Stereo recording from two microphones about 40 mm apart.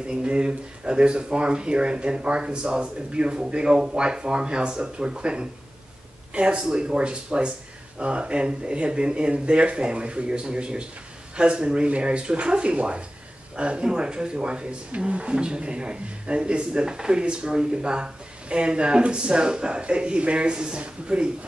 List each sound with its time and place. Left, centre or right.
0.0 s speech: right